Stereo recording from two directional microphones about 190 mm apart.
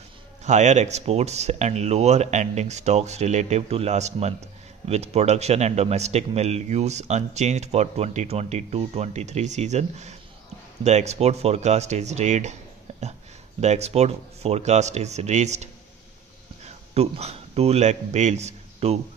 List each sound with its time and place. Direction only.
0.4 s speech: 40° right (ahead or behind)
13.6 s a man's voice: 35° right (ahead or behind)